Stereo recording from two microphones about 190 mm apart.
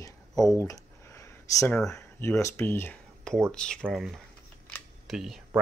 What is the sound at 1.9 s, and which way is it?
Speech, 15° left (ahead or behind).